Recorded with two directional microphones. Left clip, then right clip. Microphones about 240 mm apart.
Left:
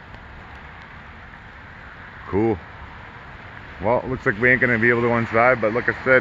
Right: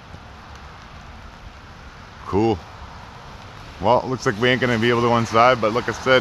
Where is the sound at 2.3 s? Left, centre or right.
Centre.